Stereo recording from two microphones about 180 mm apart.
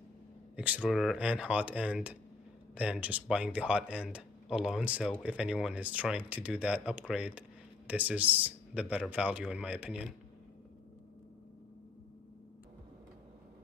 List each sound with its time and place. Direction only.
0.7 s speech: centre (ahead or behind)